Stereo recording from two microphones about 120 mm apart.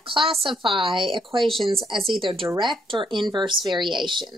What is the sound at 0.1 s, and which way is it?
Speech, 50° right (ahead or behind).